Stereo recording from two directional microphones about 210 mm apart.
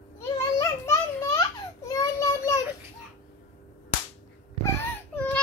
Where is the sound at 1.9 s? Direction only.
15° left (ahead or behind).